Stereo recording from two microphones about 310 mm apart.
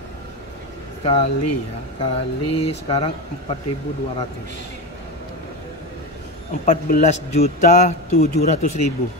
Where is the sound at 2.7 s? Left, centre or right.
Centre.